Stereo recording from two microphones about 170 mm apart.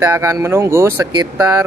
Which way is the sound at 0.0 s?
15° right (ahead or behind).